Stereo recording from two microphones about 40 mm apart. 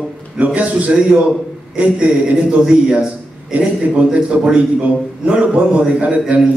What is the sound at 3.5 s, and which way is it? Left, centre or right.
A man's voice, right.